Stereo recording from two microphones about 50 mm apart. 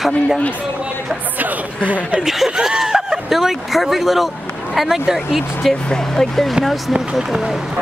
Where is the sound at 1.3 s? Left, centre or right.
Right.